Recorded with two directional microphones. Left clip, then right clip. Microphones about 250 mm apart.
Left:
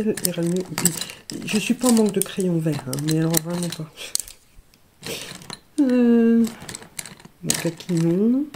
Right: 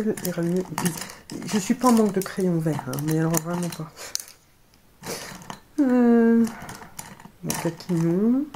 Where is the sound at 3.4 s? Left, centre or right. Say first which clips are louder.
Left 1 dB; left.